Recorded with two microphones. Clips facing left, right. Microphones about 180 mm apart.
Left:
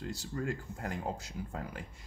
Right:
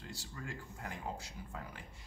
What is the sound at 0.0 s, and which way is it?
Speech, 45° left (ahead or behind).